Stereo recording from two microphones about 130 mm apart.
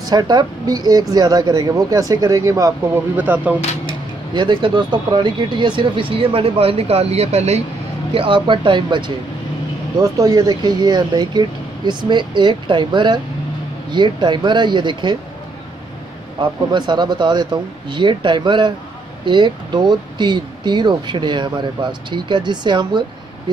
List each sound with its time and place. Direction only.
0.0 s speech: 30° right (ahead or behind)
3.2 s speech: 15° right (ahead or behind)
4.3 s speech: 35° right (ahead or behind); by 7.6 s 55° right (ahead or behind)
8.1 s speech: 40° right (ahead or behind)
16.3 s speech: 35° right (ahead or behind)